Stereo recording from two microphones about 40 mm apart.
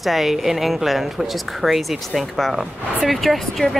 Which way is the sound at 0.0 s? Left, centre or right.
Centre.